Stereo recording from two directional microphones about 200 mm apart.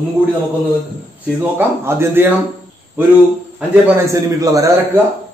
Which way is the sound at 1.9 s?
10° right (ahead or behind).